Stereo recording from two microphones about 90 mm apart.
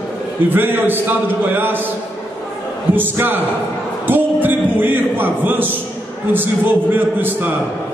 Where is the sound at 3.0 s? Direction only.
20° right (ahead or behind).